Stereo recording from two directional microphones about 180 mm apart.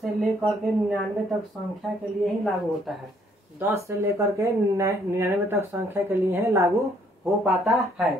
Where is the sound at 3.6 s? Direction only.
15° right (ahead or behind).